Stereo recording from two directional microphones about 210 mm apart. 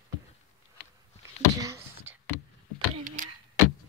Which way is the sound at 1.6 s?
15° right (ahead or behind).